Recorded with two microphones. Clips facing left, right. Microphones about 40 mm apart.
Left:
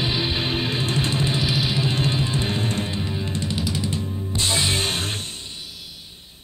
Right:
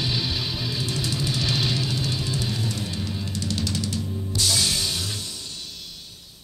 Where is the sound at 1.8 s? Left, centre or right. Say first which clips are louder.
Left 5 dB; left.